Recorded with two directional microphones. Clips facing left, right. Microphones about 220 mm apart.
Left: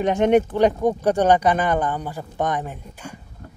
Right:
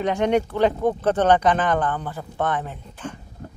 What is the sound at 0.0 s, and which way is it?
Speech, 20° left (ahead or behind).